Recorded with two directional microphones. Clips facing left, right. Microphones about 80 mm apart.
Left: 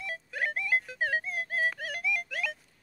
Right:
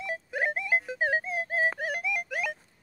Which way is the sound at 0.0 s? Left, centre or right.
Right.